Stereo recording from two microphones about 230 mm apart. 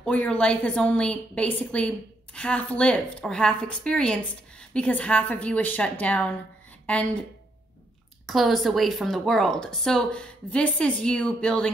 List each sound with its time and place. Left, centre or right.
0.0 s a woman's voice: centre
8.3 s a woman's voice: centre